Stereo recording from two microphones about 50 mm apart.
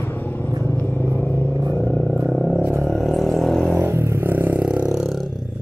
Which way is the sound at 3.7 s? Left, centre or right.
Right.